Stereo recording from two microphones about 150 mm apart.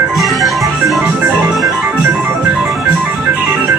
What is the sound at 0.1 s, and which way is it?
Music, centre (ahead or behind).